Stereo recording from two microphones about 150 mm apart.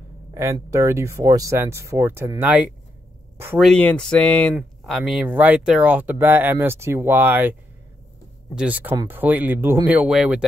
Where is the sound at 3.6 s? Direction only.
5° left (ahead or behind).